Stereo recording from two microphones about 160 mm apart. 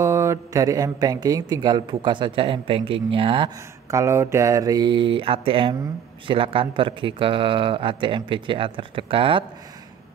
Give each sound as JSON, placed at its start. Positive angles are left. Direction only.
{"t": 0.0, "sound": "speech", "side_deg": -20}
{"t": 3.9, "sound": "speech", "side_deg": -15}